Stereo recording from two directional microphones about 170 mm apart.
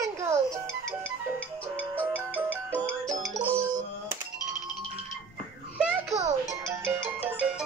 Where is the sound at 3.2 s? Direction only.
Centre (ahead or behind).